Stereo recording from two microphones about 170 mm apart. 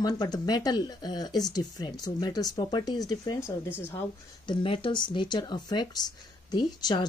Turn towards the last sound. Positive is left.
turn(degrees=25)  # may be behind; listen again after turning